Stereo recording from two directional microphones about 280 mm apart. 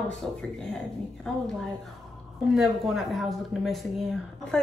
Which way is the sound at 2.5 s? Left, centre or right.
Centre.